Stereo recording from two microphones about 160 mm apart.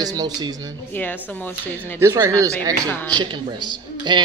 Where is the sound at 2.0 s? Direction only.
20° right (ahead or behind).